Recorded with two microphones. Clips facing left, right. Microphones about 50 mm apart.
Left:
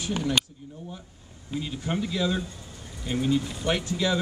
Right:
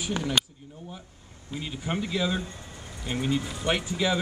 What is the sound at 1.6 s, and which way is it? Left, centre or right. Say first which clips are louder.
Speech: left 1 dB; centre.